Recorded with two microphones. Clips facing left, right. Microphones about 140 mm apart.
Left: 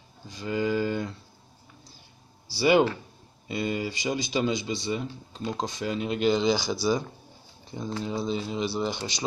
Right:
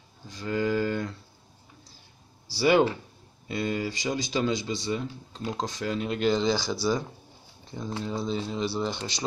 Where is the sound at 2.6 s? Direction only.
5° left (ahead or behind).